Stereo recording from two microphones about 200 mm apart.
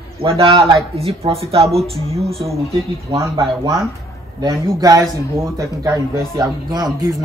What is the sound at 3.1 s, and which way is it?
Speech, 20° right (ahead or behind).